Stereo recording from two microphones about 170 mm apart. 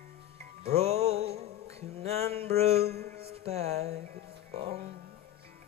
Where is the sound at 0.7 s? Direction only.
40° right (ahead or behind).